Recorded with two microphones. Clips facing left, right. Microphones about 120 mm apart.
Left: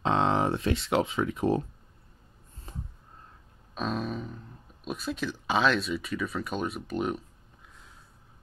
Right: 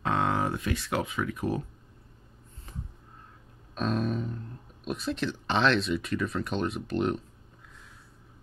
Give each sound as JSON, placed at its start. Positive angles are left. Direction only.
{"t": 0.0, "sound": "speech", "side_deg": 25}
{"t": 3.7, "sound": "speech", "side_deg": 0}